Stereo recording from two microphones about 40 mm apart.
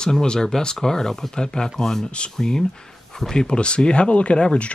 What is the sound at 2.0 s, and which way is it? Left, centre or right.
Speech, left.